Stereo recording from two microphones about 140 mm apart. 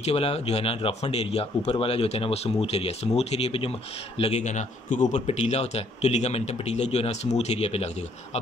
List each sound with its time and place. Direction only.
0.0 s a man's voice: 45° left (ahead or behind)